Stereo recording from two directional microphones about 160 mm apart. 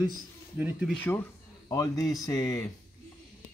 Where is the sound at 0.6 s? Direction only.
10° right (ahead or behind).